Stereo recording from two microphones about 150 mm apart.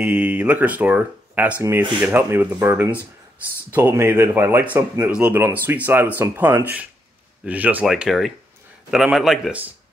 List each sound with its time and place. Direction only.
0.0 s speech: 10° right (ahead or behind)